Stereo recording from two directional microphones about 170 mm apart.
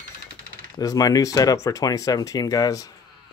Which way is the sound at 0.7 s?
20° left (ahead or behind).